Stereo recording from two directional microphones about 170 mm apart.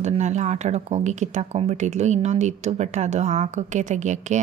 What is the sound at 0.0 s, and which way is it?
Speech, 40° right (ahead or behind).